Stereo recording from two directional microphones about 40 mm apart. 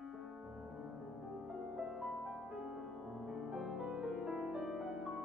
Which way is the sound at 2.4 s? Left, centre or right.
Centre.